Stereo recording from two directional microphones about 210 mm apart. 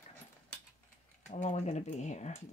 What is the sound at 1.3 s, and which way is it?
Speech, 35° left (ahead or behind).